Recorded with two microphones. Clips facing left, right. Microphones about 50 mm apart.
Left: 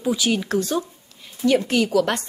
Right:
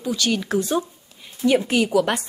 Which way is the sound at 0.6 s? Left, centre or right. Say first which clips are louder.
Right 1 dB; centre.